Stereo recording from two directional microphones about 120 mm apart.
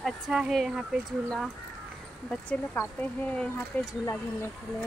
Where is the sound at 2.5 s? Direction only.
15° left (ahead or behind).